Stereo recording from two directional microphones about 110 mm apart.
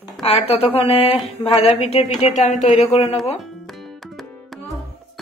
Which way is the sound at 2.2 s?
90° left.